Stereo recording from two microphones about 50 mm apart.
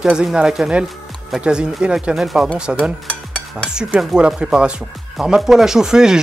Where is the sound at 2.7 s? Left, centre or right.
Right.